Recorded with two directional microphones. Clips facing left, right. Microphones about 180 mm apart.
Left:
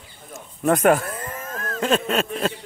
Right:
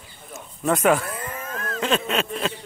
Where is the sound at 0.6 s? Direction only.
50° left (ahead or behind).